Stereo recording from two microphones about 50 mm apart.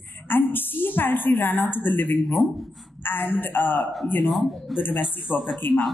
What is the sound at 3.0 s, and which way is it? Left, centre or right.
Speech, left.